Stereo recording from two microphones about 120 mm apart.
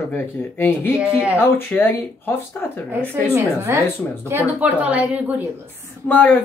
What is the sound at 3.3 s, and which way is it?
A woman's voice, 25° right (ahead or behind).